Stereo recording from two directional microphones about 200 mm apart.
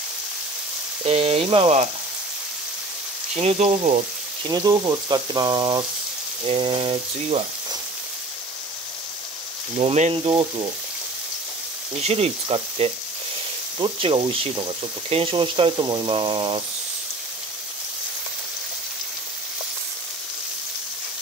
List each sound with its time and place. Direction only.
1.0 s speech: 30° right (ahead or behind)
3.3 s frying: 35° right (ahead or behind)
4.5 s speech: 20° right (ahead or behind)
9.8 s speech: 30° right (ahead or behind)
12.0 s frying: 30° right (ahead or behind)
13.7 s speech: 25° right (ahead or behind)